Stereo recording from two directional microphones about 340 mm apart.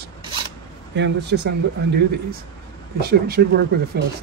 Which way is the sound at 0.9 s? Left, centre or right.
Right.